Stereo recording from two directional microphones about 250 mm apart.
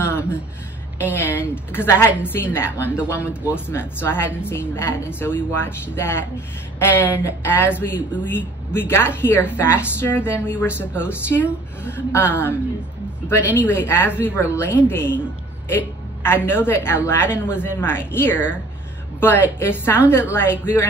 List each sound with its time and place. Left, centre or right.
0.0 s a sound: centre
0.9 s speech: centre
13.6 s a woman's voice: centre